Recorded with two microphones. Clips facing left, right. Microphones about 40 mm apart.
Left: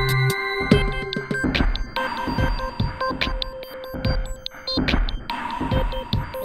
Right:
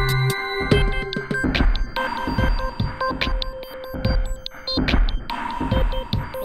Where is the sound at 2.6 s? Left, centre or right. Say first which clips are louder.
Even; centre.